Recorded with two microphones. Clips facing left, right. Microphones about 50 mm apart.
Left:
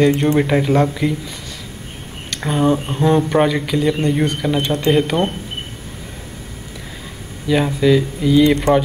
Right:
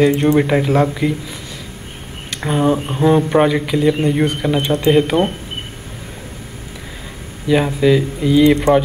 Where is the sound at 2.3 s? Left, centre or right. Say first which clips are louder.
Right 1 dB; centre.